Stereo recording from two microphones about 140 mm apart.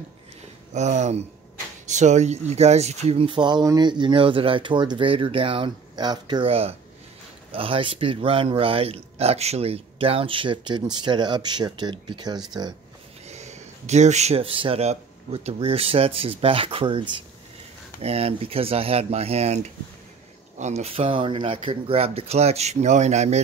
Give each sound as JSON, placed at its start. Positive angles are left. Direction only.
{"t": 0.7, "sound": "speech", "side_deg": -55}
{"t": 3.3, "sound": "speech", "side_deg": -35}
{"t": 13.3, "sound": "speech", "side_deg": -55}